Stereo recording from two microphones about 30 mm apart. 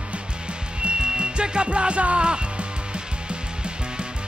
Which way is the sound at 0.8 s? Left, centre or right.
Right.